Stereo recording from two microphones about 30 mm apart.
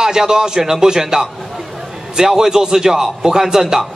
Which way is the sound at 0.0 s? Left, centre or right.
Right.